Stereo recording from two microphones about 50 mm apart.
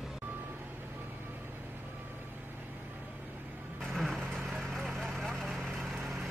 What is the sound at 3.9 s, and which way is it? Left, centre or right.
Vehicle, centre.